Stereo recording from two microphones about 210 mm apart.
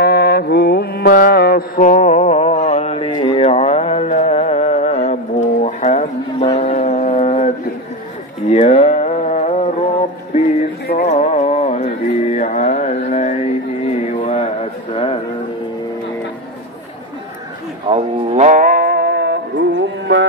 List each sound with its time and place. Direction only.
0.0 s music: 50° left (ahead or behind); by 6.5 s 30° left (ahead or behind)
6.5 s foghorn: 30° left (ahead or behind)
8.5 s a sound: 30° left (ahead or behind)
11.0 s mantra: 30° left (ahead or behind)
14.1 s a sound: 30° left (ahead or behind)
17.8 s music: 30° right (ahead or behind); by 20.2 s 60° right (ahead or behind)